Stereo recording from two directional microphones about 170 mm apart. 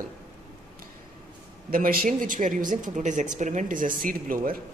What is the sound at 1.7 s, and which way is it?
Speech, 60° right (ahead or behind).